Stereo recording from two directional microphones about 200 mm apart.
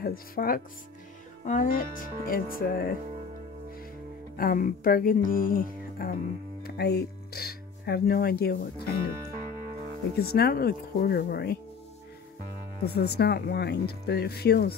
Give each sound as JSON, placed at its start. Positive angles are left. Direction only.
{"t": 0.0, "sound": "speech", "side_deg": 45}
{"t": 4.4, "sound": "speech", "side_deg": 45}
{"t": 6.6, "sound": "speech", "side_deg": 55}
{"t": 10.1, "sound": "speech", "side_deg": 50}
{"t": 12.8, "sound": "speech", "side_deg": 55}